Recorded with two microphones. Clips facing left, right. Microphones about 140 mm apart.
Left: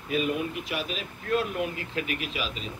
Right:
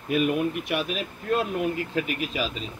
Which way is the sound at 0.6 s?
60° right (ahead or behind).